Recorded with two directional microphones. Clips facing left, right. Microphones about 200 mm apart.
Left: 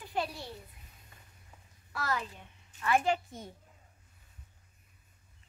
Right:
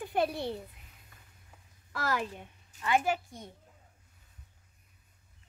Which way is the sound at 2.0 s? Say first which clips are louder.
Right 3 dB; 90° right.